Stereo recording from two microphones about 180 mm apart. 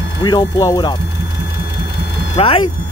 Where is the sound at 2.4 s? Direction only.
30° left (ahead or behind).